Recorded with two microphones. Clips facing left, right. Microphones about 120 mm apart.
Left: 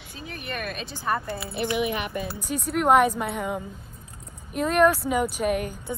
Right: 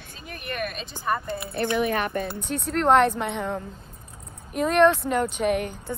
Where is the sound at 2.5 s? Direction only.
10° left (ahead or behind).